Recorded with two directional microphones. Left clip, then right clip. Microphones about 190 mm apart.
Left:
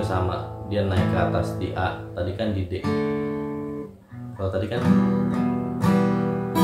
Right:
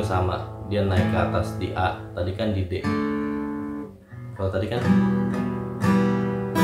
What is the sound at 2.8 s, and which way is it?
Guitar, 25° left (ahead or behind).